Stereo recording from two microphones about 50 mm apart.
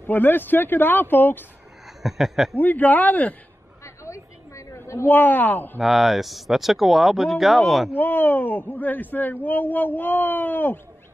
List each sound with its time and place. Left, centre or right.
0.0 s speech: left
2.0 s speech: centre
2.5 s speech: left
3.8 s a sound: left
5.0 s speech: left
5.8 s speech: centre
7.9 s speech: left